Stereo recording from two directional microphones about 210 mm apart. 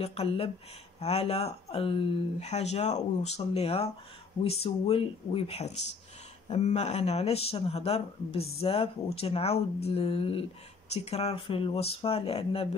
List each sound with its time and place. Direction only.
0.0 s speech: 30° left (ahead or behind)